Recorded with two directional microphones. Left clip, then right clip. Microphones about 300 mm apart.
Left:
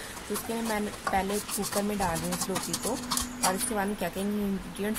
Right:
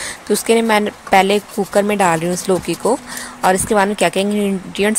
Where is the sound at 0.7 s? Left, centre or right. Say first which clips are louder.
Right 16 dB; centre.